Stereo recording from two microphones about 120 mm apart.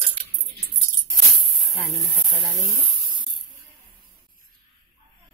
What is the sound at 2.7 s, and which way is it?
Speech, 25° right (ahead or behind).